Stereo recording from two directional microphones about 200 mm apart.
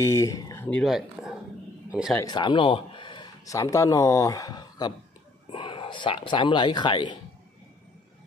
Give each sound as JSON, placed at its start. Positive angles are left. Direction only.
{"t": 0.0, "sound": "speech", "side_deg": 15}
{"t": 0.7, "sound": "speech", "side_deg": 0}
{"t": 2.1, "sound": "speech", "side_deg": 20}